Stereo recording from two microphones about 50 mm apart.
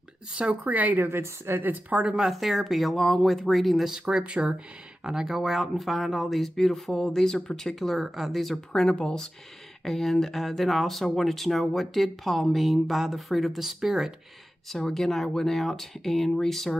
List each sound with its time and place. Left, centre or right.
0.3 s speech: right
1.0 s a woman's voice: right
1.6 s speech: right
2.0 s speech: centre
2.3 s speech: centre
3.8 s speech: centre
5.0 s speech: centre
8.7 s speech: centre
9.8 s speech: centre
14.7 s speech: centre